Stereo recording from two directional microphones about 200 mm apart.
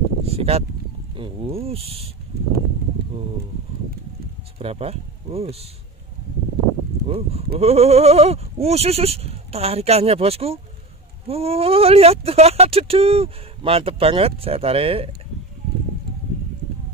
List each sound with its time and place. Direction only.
0.2 s a sound: 30° right (ahead or behind)
1.1 s speech: 25° right (ahead or behind)
4.6 s speech: 30° right (ahead or behind)
7.1 s speech: 30° right (ahead or behind)